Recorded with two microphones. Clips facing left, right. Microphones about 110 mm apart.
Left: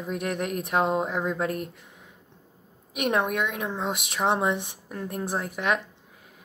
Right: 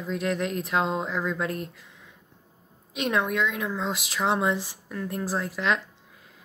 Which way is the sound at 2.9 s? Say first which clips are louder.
Left 1 dB; 20° left (ahead or behind).